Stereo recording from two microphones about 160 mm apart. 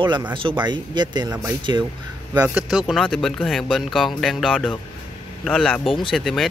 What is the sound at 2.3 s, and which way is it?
Speech, 5° right (ahead or behind).